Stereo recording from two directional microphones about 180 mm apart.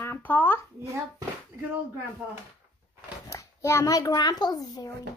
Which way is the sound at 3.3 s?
15° left (ahead or behind).